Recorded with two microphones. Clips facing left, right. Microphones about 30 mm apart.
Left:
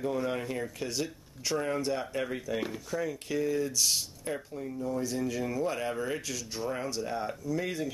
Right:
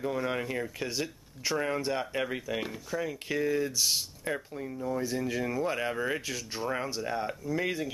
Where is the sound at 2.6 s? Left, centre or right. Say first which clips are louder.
Even; centre.